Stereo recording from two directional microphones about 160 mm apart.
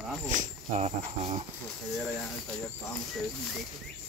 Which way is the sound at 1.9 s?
Centre (ahead or behind).